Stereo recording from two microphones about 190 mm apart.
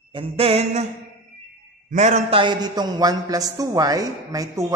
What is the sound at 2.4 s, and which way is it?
A woman's voice, 20° right (ahead or behind).